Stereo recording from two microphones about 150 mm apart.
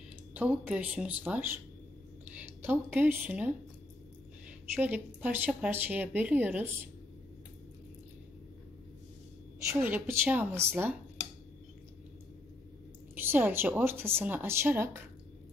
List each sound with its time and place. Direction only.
0.3 s speech: 10° right (ahead or behind)
4.7 s speech: 10° right (ahead or behind)
9.7 s speech: 15° right (ahead or behind)
13.1 s speech: 15° right (ahead or behind)